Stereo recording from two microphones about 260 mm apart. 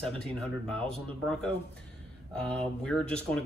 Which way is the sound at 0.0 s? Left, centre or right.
Centre.